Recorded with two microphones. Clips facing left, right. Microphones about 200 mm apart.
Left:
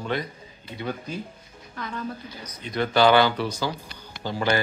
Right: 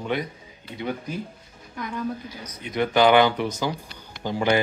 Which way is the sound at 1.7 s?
15° right (ahead or behind).